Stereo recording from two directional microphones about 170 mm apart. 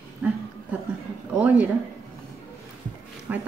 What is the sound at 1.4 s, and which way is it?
Speech, 10° right (ahead or behind).